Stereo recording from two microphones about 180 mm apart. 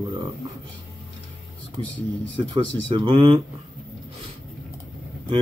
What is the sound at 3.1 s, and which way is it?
Speech, 30° right (ahead or behind).